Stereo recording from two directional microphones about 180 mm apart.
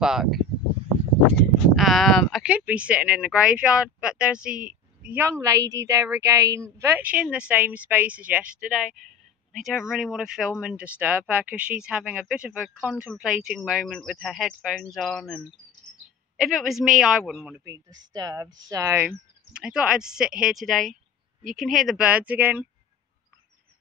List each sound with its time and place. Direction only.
0.0 s speech: centre (ahead or behind)
1.8 s a woman's voice: centre (ahead or behind)
4.5 s a woman's voice: 50° right (ahead or behind)
5.0 s a woman's voice: 10° right (ahead or behind)
17.6 s a woman's voice: 20° right (ahead or behind)